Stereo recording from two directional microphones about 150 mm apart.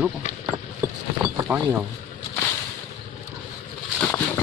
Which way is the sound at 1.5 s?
15° right (ahead or behind).